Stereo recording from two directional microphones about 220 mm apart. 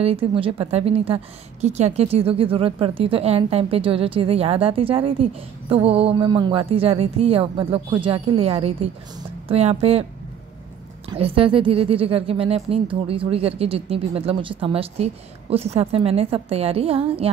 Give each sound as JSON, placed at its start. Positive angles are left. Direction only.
{"t": 0.0, "sound": "a woman's voice", "side_deg": -25}
{"t": 11.1, "sound": "a woman's voice", "side_deg": -25}